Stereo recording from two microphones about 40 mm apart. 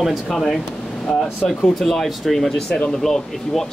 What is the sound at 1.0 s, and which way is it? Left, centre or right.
Speech, left.